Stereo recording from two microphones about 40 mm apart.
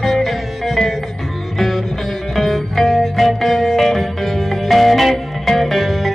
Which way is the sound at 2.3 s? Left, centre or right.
Centre.